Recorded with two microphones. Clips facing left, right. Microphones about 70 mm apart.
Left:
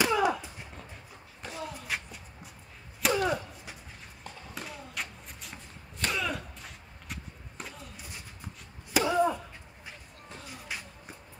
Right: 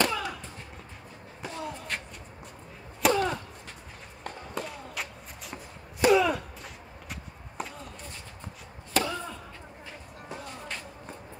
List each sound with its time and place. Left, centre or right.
0.0 s chop: centre
1.4 s slam: centre
3.0 s arrow: centre
4.6 s a sound: centre
8.9 s chop: centre
10.4 s a sound: centre